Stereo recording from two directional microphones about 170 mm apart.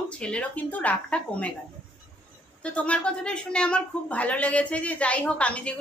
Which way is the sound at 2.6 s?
5° left (ahead or behind).